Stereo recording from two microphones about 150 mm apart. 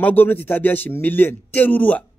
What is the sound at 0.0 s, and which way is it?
Speech, 10° left (ahead or behind).